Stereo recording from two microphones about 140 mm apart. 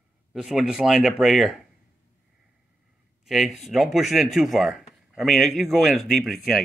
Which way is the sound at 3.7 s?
Centre (ahead or behind).